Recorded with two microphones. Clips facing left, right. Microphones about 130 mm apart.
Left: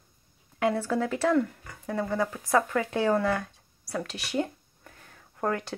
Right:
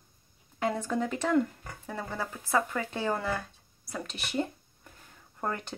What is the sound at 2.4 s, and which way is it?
Speech, 10° right (ahead or behind).